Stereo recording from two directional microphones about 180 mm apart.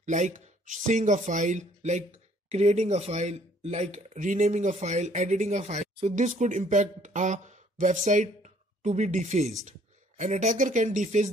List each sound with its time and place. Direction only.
0.0 s speech: 40° right (ahead or behind)